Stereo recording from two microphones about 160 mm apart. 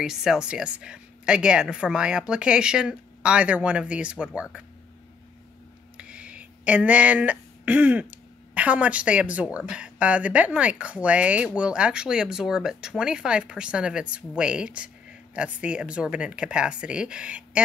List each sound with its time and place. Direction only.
0.0 s a woman's voice: 5° right (ahead or behind)
5.9 s a sound: 5° right (ahead or behind)
8.5 s a woman's voice: 10° right (ahead or behind)